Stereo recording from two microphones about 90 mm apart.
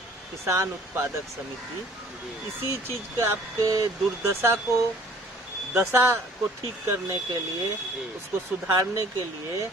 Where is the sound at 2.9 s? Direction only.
30° right (ahead or behind).